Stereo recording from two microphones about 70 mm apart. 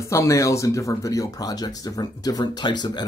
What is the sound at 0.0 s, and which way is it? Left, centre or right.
Speech, left.